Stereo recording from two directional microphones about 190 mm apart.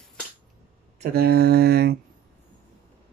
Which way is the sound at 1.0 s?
55° right (ahead or behind).